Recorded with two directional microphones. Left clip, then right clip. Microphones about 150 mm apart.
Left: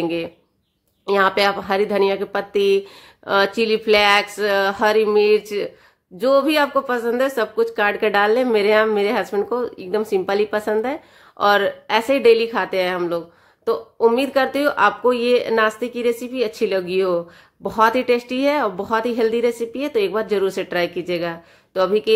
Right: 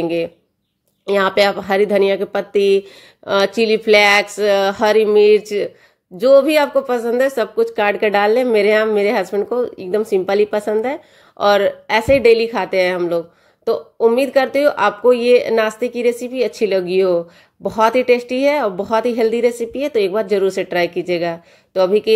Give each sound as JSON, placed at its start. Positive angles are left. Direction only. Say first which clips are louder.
{"t": 0.0, "sound": "speech", "louder": "right 4 dB", "side_deg": -20}